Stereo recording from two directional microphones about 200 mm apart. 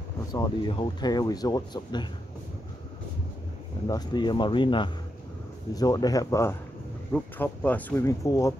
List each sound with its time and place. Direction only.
0.3 s speech: 25° left (ahead or behind)
3.8 s speech: 20° left (ahead or behind)